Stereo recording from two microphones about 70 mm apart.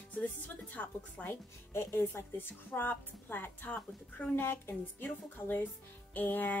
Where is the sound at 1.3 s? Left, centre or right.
Left.